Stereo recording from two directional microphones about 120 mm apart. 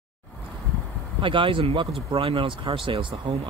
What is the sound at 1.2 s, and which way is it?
Speech, 45° right (ahead or behind).